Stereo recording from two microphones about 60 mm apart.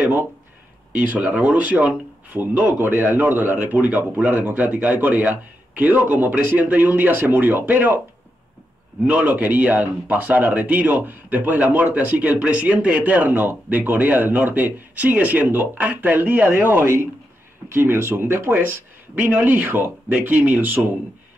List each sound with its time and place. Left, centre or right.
0.9 s speech: right
9.0 s speech: right